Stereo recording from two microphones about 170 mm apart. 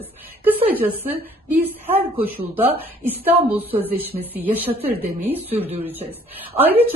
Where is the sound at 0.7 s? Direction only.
10° right (ahead or behind).